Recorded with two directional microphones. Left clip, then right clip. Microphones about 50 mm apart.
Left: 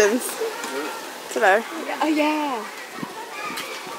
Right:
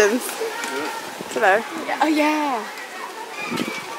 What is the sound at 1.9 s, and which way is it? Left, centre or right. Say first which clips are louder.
Speech: right 3 dB; right.